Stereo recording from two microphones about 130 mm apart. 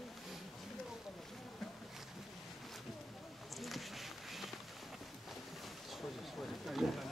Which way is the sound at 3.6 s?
Centre (ahead or behind).